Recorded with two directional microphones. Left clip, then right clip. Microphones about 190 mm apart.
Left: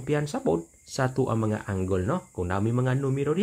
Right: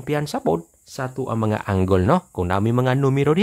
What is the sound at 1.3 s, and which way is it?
Speech, 35° right (ahead or behind).